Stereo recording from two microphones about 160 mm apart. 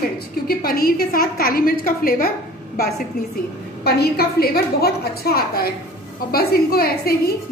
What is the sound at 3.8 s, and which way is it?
A woman's voice, 85° left.